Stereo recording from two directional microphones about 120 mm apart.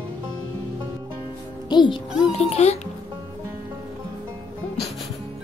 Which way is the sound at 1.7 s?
40° left (ahead or behind).